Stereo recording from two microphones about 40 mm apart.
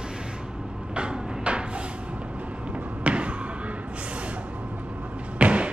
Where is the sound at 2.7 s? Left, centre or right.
Right.